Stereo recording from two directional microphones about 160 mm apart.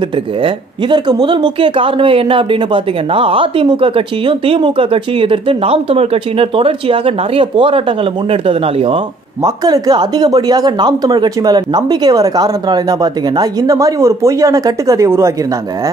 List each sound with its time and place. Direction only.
0.4 s speech: 30° right (ahead or behind)